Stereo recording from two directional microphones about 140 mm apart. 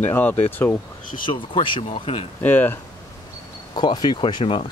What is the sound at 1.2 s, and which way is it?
Speech, 35° left (ahead or behind).